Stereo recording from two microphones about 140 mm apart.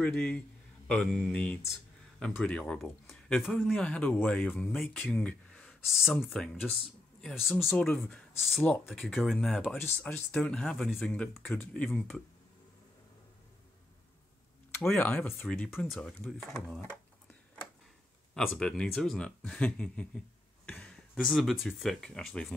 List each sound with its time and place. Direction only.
0.0 s speech: 10° left (ahead or behind)
3.8 s speech: 10° left (ahead or behind)
5.9 s speech: centre (ahead or behind)
9.8 s speech: 15° left (ahead or behind)
14.8 s speech: 10° left (ahead or behind)
18.3 s speech: 5° left (ahead or behind)